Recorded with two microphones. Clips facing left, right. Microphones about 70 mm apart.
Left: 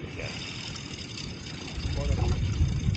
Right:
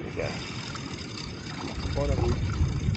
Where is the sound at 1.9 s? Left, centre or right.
Right.